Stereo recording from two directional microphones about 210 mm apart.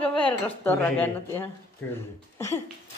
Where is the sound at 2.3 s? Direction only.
15° left (ahead or behind).